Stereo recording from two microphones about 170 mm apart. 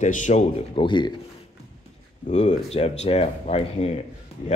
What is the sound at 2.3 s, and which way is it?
A man's voice, 40° left (ahead or behind).